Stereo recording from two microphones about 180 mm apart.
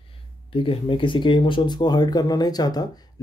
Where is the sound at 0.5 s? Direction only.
30° left (ahead or behind).